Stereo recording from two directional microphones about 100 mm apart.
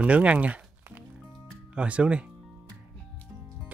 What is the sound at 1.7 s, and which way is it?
Speech, 10° right (ahead or behind).